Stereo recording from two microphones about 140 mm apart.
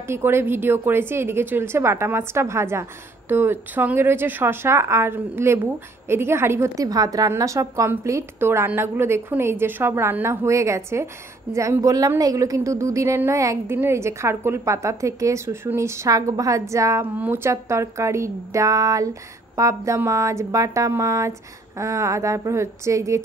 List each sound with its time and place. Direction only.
0.1 s a woman's voice: 15° right (ahead or behind)